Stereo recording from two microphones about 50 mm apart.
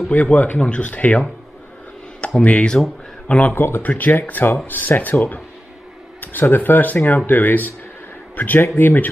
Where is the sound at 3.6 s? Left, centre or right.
Left.